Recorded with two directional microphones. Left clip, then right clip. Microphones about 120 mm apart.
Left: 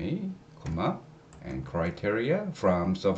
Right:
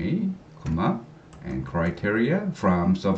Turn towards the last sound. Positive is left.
turn(degrees=15)  # may be behind; listen again after turning